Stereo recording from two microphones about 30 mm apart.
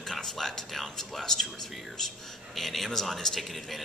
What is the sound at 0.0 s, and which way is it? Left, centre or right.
Speech, centre.